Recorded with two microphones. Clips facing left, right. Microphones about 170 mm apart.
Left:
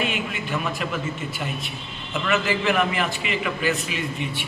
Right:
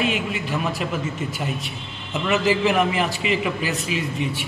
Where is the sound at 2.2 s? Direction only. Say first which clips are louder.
Right 3 dB; 20° right (ahead or behind).